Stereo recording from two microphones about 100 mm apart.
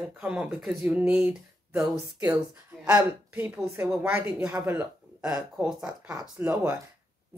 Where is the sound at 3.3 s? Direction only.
20° right (ahead or behind).